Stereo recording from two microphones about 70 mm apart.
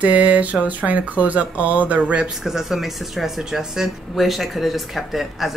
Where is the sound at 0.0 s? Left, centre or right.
Right.